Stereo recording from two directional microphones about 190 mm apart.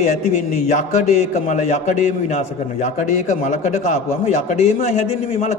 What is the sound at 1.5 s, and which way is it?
A man's voice, 40° left (ahead or behind).